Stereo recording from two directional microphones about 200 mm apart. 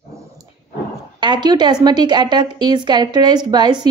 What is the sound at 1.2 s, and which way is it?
A woman's voice, 20° right (ahead or behind).